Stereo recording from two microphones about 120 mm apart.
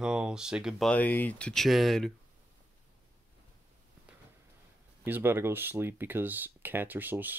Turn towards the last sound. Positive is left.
turn(degrees=-15)  # may be behind; listen again after turning